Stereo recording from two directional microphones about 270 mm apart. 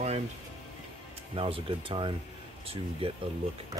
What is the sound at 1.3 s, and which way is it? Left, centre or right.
Speech, centre.